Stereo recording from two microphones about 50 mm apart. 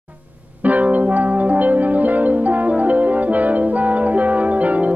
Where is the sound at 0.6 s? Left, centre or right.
Right.